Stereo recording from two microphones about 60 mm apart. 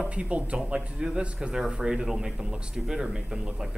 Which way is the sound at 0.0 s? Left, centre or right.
Right.